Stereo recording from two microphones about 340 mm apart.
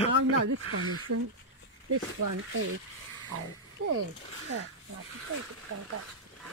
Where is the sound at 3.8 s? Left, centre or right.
Right.